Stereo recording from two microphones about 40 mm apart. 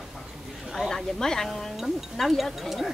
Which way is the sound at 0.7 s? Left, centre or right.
Centre.